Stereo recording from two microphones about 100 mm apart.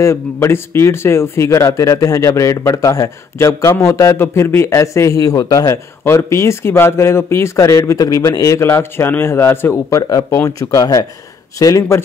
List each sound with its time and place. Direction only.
0.0 s speech: 25° left (ahead or behind)